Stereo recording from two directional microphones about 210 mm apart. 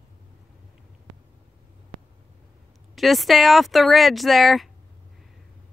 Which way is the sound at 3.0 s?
Centre (ahead or behind).